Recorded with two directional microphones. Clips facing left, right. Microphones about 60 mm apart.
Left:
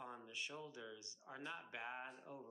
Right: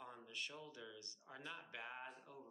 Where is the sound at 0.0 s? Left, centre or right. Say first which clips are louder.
Left 1 dB; centre.